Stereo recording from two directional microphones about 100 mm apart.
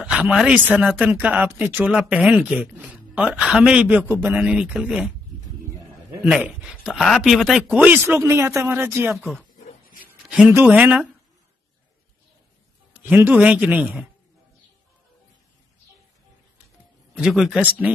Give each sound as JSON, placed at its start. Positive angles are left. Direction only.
{"t": 0.0, "sound": "speech", "side_deg": -10}
{"t": 0.7, "sound": "speech", "side_deg": -15}
{"t": 6.4, "sound": "speech", "side_deg": -10}
{"t": 7.6, "sound": "speech", "side_deg": -15}
{"t": 10.7, "sound": "speech", "side_deg": -10}
{"t": 13.0, "sound": "a man's voice", "side_deg": -25}
{"t": 13.3, "sound": "speech", "side_deg": -10}
{"t": 17.1, "sound": "speech", "side_deg": -5}